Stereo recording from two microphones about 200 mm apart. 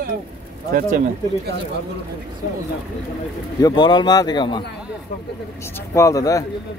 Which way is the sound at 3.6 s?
20° left (ahead or behind).